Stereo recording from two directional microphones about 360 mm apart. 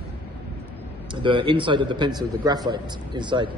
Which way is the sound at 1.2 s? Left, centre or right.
Centre.